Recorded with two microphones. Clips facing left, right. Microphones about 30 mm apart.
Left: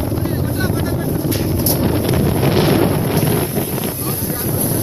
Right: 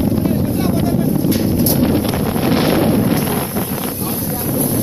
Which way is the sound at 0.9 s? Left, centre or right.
Left.